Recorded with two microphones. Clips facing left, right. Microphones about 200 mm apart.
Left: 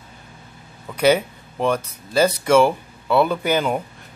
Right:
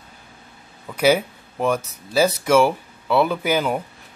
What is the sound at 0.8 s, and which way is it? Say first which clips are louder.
Speech: left 1 dB; 5° right (ahead or behind).